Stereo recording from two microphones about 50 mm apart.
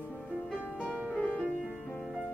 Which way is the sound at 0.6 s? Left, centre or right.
Left.